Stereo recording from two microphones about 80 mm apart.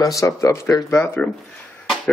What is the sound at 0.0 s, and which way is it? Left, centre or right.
Speech, left.